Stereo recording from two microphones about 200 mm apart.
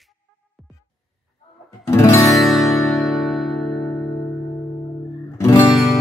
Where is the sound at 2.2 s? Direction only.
Centre (ahead or behind).